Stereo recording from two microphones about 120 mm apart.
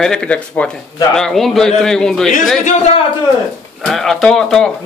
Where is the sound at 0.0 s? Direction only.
5° left (ahead or behind).